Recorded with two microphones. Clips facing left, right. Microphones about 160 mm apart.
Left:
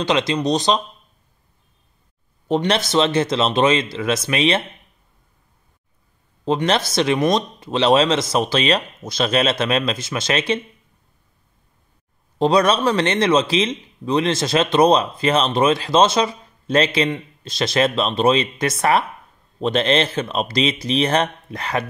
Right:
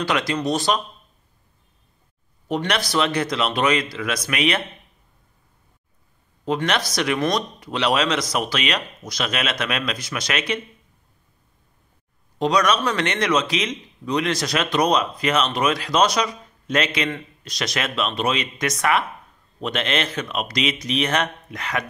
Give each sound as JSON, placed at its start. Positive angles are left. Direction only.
{"t": 0.0, "sound": "speech", "side_deg": 20}
{"t": 2.4, "sound": "speech", "side_deg": 30}
{"t": 6.4, "sound": "speech", "side_deg": 30}
{"t": 12.4, "sound": "speech", "side_deg": 30}